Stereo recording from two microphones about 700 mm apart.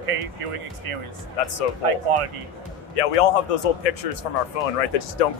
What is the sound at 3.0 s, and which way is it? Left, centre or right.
Speech, left.